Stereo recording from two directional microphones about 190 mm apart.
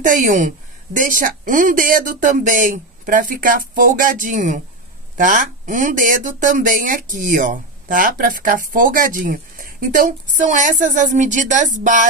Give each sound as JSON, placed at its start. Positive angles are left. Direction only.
{"t": 0.0, "sound": "speech", "side_deg": -45}